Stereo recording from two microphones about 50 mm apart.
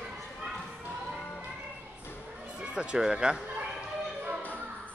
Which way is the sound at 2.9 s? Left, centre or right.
Centre.